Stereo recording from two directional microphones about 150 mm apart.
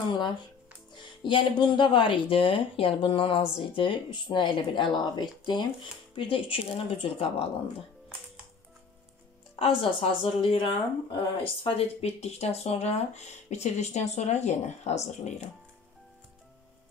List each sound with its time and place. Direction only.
1.2 s speech: 30° left (ahead or behind)
9.6 s speech: 35° left (ahead or behind)